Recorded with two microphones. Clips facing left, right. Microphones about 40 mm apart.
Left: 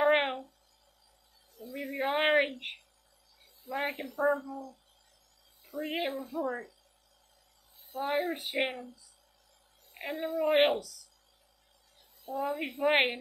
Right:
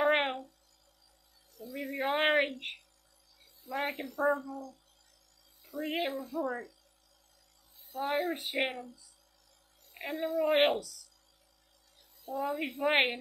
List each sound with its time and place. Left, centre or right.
0.0 s a sound: centre
1.7 s a sound: centre
3.6 s a woman's voice: centre
5.7 s a woman's voice: centre
6.1 s speech: left
8.0 s speech: centre
10.1 s a woman's voice: centre
10.5 s speech: centre
12.4 s a woman's voice: centre